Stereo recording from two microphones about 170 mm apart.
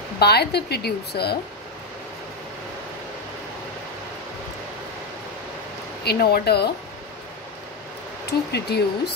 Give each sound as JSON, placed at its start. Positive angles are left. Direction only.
{"t": 0.2, "sound": "a woman's voice", "side_deg": 70}
{"t": 6.0, "sound": "a woman's voice", "side_deg": 65}
{"t": 8.3, "sound": "a woman's voice", "side_deg": 75}